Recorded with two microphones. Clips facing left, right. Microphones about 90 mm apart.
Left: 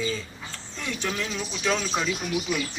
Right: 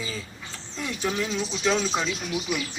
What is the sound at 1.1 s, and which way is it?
Speech, 20° right (ahead or behind).